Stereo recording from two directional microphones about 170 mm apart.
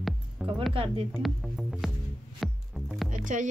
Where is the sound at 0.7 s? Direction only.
30° right (ahead or behind).